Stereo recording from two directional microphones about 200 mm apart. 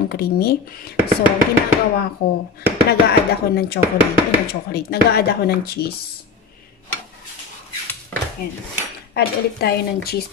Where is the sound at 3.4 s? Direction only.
50° left (ahead or behind).